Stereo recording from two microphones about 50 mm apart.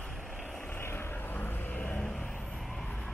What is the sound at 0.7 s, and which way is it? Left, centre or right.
Vehicle, left.